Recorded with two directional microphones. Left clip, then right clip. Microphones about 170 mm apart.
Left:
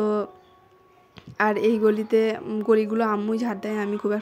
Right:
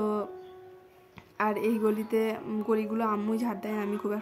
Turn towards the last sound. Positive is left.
turn(degrees=20)  # may be behind; listen again after turning